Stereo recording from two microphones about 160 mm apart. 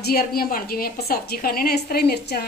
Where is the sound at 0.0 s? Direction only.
70° left (ahead or behind).